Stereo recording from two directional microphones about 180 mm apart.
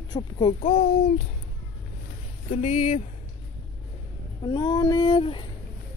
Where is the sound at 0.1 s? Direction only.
25° left (ahead or behind).